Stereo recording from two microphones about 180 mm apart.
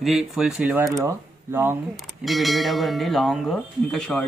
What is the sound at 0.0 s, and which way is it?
Speech, centre (ahead or behind).